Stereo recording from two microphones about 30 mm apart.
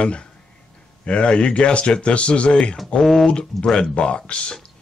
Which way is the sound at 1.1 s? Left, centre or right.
Left.